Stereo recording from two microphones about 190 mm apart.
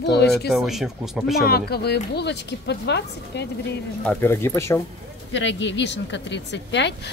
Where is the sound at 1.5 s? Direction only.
55° left (ahead or behind).